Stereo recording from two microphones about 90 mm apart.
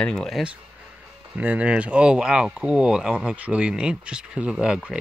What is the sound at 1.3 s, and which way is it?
Speech, 15° right (ahead or behind).